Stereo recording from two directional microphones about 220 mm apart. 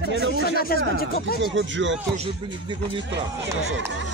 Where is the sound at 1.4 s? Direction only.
55° right (ahead or behind).